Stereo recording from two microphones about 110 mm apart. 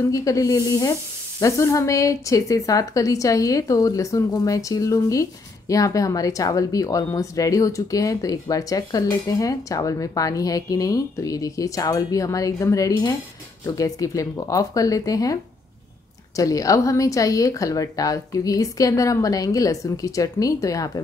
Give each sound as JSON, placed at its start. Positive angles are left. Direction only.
{"t": 0.1, "sound": "speech", "side_deg": 30}
{"t": 16.3, "sound": "speech", "side_deg": 30}